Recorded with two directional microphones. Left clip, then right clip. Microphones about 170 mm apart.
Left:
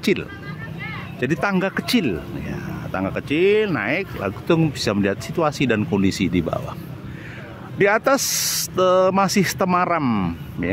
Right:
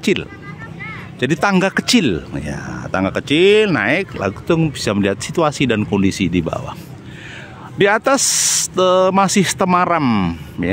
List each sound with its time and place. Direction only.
0.0 s speech: 15° right (ahead or behind)
4.5 s speech: 10° right (ahead or behind)
7.8 s speech: 15° right (ahead or behind)